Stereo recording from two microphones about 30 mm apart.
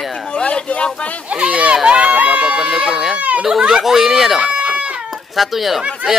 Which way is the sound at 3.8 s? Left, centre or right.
Centre.